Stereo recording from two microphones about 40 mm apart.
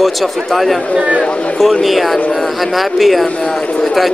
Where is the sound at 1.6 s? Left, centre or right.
Centre.